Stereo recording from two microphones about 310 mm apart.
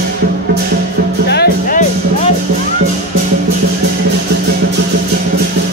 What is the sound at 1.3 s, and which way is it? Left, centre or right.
Music, left.